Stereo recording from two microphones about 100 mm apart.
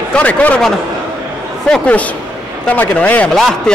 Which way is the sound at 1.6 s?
10° left (ahead or behind).